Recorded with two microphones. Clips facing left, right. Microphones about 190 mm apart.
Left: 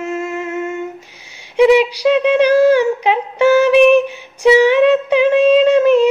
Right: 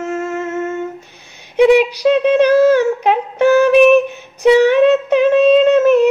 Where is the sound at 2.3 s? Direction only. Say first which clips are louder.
Even; 10° left (ahead or behind).